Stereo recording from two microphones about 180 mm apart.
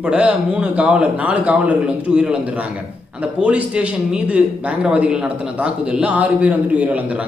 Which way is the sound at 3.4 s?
5° right (ahead or behind).